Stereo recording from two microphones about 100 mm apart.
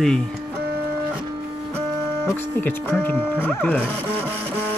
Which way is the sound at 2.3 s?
20° left (ahead or behind).